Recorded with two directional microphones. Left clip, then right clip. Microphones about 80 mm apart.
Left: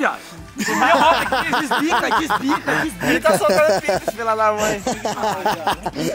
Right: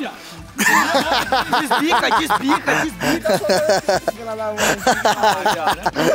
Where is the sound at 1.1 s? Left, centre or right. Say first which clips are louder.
Even; centre.